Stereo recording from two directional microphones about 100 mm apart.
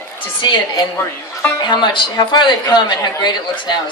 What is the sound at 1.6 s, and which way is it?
A woman's voice, 50° left (ahead or behind).